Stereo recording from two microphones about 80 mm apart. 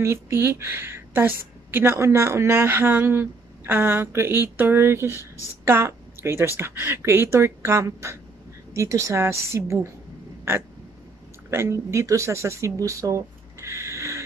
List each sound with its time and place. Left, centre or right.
0.0 s a woman's voice: right
11.5 s speech: right